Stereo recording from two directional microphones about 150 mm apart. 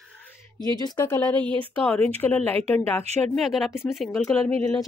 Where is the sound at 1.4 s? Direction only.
35° right (ahead or behind).